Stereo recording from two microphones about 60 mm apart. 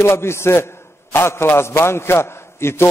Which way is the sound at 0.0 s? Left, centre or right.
Left.